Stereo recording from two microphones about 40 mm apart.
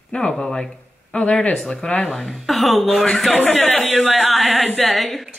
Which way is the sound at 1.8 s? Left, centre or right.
Left.